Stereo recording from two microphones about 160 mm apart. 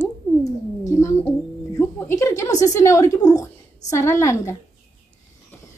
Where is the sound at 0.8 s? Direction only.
15° left (ahead or behind).